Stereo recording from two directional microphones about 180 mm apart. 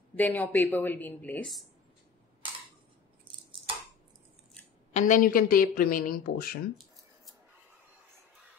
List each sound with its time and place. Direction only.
0.1 s speech: 10° left (ahead or behind)
4.9 s speech: 45° left (ahead or behind)